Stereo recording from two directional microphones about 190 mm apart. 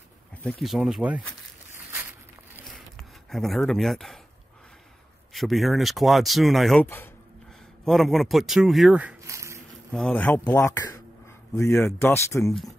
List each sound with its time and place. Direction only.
0.4 s speech: 5° left (ahead or behind)
2.7 s a sound: centre (ahead or behind)
5.3 s speech: centre (ahead or behind)
9.9 s speech: 5° left (ahead or behind)